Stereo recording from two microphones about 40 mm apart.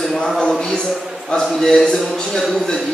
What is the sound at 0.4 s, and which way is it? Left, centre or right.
Speech, centre.